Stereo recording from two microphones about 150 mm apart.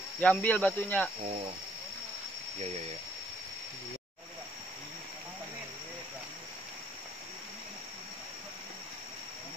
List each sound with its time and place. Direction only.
0.2 s speech: 10° left (ahead or behind)
1.2 s speech: 45° right (ahead or behind)